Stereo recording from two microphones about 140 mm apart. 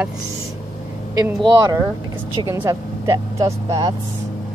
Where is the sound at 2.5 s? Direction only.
20° right (ahead or behind).